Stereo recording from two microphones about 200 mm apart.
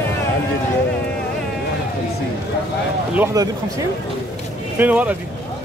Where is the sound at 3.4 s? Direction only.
20° right (ahead or behind).